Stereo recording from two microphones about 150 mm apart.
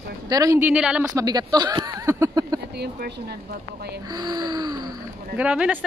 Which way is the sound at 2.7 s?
90° right.